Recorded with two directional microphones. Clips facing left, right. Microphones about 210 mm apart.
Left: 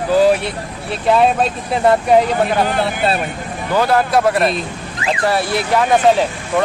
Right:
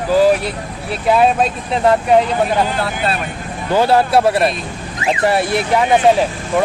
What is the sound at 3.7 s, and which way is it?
A man's voice, 25° right (ahead or behind).